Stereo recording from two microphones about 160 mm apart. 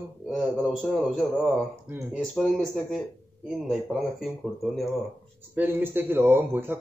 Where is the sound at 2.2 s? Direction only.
Centre (ahead or behind).